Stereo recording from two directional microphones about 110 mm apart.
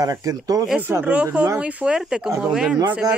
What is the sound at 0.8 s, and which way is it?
Speech, 15° right (ahead or behind).